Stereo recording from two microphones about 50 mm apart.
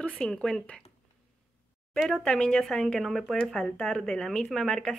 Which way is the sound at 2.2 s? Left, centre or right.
Centre.